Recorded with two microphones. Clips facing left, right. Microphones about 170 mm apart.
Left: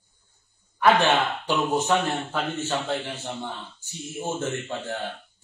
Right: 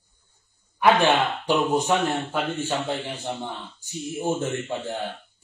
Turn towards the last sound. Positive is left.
turn(degrees=-15)  # may be behind; listen again after turning